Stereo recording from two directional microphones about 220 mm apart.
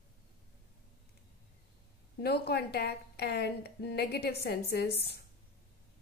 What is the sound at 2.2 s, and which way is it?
A woman's voice, 45° left (ahead or behind).